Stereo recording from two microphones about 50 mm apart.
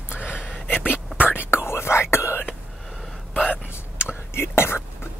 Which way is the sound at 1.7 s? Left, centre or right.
Left.